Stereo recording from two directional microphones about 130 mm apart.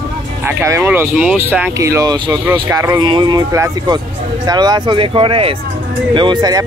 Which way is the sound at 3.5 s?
25° right (ahead or behind).